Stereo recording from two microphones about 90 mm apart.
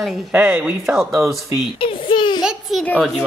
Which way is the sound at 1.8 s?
80° left.